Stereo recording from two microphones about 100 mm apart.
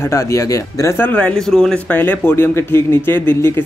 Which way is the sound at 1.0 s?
15° left (ahead or behind).